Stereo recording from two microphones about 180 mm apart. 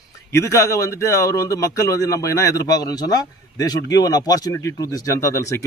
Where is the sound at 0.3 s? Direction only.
15° left (ahead or behind).